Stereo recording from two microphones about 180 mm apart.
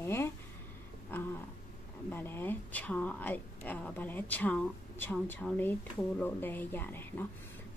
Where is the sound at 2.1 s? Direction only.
10° left (ahead or behind).